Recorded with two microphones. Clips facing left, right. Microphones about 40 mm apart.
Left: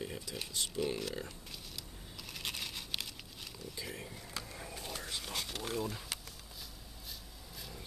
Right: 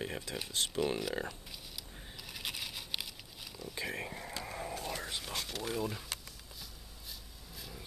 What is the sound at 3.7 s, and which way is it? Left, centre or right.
Speech, right.